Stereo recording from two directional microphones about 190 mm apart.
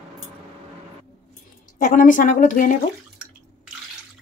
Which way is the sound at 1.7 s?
45° left (ahead or behind).